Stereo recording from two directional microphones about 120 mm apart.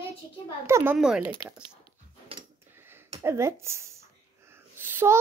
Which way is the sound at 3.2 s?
20° right (ahead or behind).